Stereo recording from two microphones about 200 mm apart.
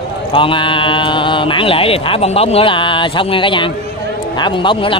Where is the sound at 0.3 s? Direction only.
25° left (ahead or behind).